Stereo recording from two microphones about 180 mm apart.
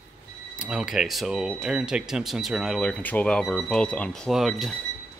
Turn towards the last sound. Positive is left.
turn(degrees=0)  # may be behind; listen again after turning